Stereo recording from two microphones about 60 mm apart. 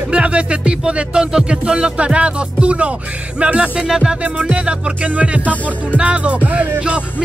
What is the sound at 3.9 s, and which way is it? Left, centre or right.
Music, centre.